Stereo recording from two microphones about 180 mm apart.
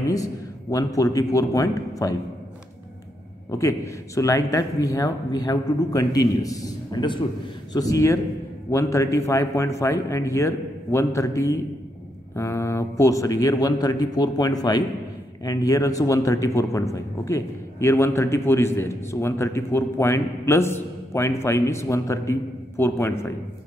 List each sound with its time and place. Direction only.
0.0 s a man's voice: 20° left (ahead or behind)
3.4 s speech: 15° left (ahead or behind)